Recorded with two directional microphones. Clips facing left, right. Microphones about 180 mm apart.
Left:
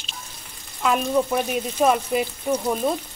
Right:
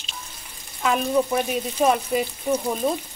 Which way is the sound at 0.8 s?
Centre (ahead or behind).